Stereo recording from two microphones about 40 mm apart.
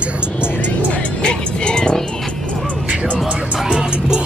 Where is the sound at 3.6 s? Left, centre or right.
Right.